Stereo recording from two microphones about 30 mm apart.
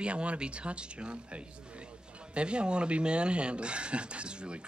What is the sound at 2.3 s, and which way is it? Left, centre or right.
Speech, right.